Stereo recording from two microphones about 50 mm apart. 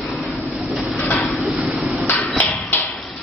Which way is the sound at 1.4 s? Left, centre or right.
Centre.